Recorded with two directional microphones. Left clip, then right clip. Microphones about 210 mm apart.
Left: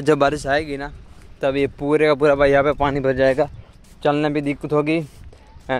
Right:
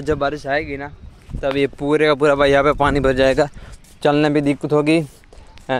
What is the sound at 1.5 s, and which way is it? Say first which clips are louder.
Speech: right 2 dB; 5° right (ahead or behind).